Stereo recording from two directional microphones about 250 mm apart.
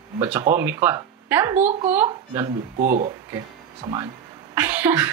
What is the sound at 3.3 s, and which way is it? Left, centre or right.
Speech, centre.